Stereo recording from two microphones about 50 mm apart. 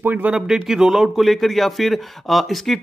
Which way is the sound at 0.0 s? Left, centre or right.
Right.